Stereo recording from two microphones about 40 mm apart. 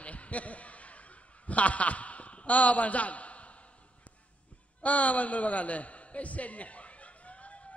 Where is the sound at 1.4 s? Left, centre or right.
Left.